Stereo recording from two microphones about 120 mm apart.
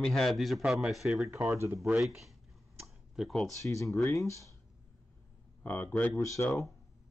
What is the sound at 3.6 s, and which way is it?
Speech, 25° left (ahead or behind).